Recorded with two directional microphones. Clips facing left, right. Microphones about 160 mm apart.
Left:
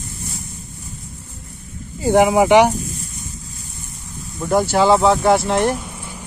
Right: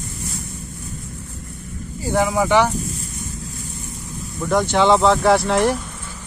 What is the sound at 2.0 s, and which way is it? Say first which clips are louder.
Speech: left 6 dB; 20° left (ahead or behind).